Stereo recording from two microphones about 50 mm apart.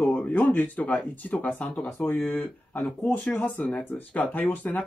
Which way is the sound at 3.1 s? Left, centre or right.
Left.